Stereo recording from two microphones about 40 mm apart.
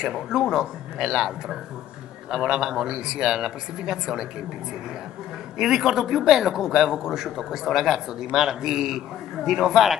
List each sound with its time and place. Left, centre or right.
0.0 s a man's voice: centre
5.6 s a man's voice: centre